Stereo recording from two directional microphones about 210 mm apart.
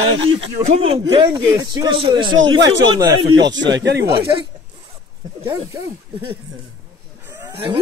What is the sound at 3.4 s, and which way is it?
Speech, 60° right (ahead or behind).